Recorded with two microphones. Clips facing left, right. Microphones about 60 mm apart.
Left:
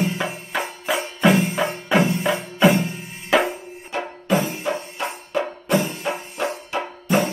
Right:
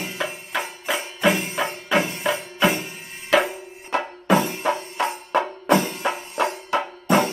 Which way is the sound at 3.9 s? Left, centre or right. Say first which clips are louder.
Right 2 dB; right.